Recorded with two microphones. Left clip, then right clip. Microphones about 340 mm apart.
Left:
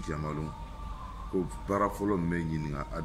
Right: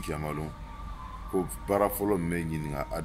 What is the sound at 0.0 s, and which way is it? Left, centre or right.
Speech, centre.